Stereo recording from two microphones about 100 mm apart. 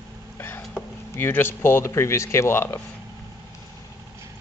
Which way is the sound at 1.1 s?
25° left (ahead or behind).